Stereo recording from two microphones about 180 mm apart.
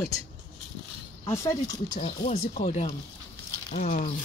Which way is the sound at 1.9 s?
40° left (ahead or behind).